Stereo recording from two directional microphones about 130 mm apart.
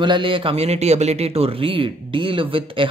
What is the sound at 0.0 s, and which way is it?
Speech, 40° right (ahead or behind).